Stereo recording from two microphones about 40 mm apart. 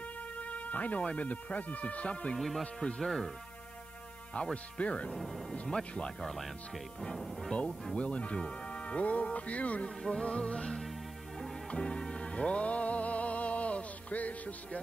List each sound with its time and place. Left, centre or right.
0.4 s music: left
1.0 s speech: left
2.3 s speech: centre
2.6 s speech: left
3.0 s music: centre
4.4 s speech: left
5.1 s speech: centre
5.5 s music: centre
6.2 s speech: centre
7.9 s speech: left
9.8 s music: centre; by 14.8 s left